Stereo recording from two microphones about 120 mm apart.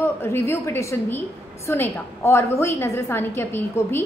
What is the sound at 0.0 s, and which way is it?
A woman's voice, 20° left (ahead or behind).